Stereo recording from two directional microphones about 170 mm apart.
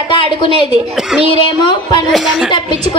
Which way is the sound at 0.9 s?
5° right (ahead or behind).